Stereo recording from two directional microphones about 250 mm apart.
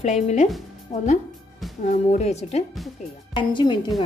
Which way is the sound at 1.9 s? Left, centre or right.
Left.